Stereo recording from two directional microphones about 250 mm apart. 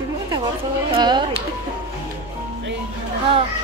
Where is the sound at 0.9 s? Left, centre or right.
Centre.